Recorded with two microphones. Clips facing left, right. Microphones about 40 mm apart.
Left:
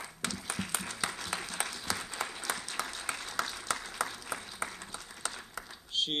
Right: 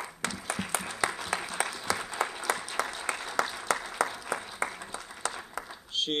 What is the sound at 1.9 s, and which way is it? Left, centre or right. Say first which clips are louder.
Applause: right 6 dB; centre.